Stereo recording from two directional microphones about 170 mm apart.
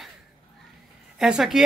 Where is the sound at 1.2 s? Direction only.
5° right (ahead or behind).